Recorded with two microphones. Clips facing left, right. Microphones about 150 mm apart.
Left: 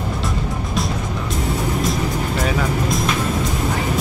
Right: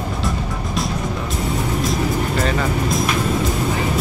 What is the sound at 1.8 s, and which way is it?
Music, centre (ahead or behind).